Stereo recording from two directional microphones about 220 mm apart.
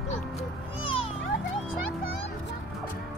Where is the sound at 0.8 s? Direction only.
25° left (ahead or behind).